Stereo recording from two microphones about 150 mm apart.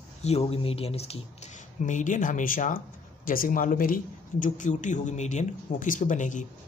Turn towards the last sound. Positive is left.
turn(degrees=55)  # may be behind; listen again after turning